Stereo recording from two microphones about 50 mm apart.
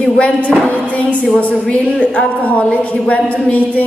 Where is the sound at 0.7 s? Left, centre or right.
Left.